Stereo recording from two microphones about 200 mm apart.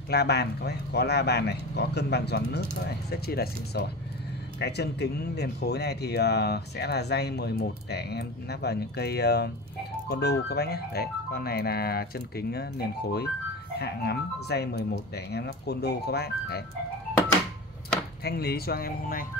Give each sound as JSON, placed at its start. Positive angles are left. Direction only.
{"t": 0.1, "sound": "speech", "side_deg": 55}
{"t": 18.2, "sound": "speech", "side_deg": 50}